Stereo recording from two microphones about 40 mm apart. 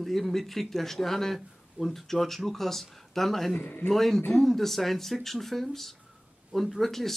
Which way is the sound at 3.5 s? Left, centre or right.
Left.